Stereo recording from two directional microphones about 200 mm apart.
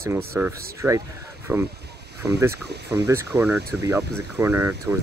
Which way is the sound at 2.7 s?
55° right (ahead or behind).